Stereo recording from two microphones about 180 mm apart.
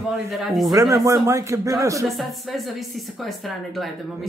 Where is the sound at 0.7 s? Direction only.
20° right (ahead or behind).